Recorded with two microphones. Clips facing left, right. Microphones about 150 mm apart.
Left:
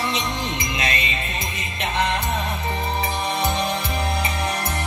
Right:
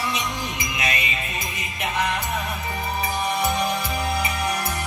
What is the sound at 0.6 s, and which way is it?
Music, 10° right (ahead or behind).